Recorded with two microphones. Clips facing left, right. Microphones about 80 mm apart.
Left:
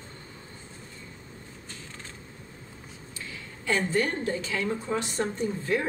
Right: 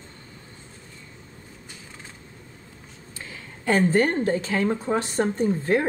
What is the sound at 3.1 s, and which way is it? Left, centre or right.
A woman's voice, right.